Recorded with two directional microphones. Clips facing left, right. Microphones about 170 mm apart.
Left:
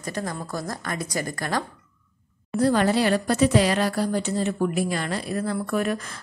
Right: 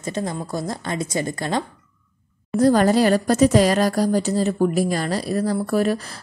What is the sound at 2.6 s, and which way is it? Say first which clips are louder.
A woman's voice: right 5 dB; 40° right (ahead or behind).